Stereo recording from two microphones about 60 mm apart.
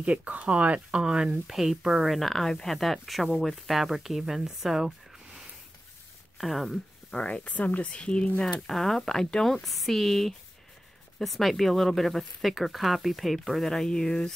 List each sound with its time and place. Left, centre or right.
0.0 s speech: right; by 6.8 s centre
7.1 s speech: centre